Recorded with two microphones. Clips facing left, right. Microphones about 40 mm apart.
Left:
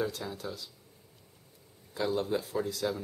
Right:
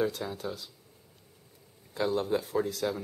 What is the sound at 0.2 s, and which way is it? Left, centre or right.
Speech, centre.